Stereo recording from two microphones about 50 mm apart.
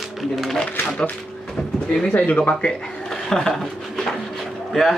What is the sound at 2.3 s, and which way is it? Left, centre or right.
Speech, left.